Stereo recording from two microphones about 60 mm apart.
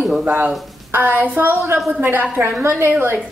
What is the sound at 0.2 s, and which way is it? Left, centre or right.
A woman's voice, right.